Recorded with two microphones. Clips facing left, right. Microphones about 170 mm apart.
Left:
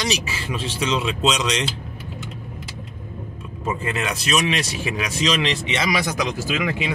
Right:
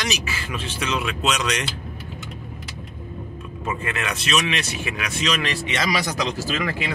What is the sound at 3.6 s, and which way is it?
Speech, 30° left (ahead or behind).